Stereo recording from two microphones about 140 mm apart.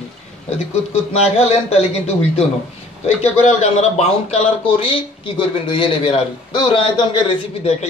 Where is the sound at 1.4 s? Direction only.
45° left (ahead or behind).